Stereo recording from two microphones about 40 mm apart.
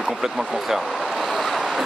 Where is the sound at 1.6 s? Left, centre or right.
Centre.